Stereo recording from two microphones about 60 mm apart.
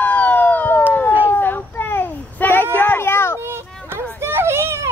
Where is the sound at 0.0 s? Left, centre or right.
Left.